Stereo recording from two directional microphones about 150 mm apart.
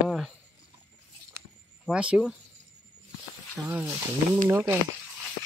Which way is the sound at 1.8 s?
5° right (ahead or behind).